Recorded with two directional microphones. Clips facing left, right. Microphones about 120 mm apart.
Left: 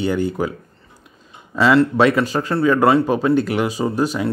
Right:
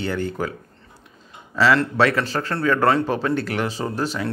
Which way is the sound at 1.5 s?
20° left (ahead or behind).